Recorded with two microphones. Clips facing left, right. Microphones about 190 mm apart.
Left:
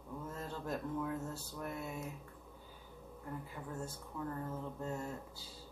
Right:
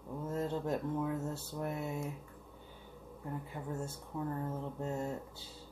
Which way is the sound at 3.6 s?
30° right (ahead or behind).